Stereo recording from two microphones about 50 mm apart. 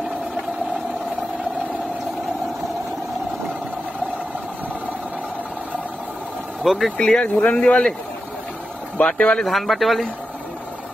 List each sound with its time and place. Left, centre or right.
6.6 s speech: centre
7.0 s speech: centre
9.0 s speech: centre
9.4 s speech: centre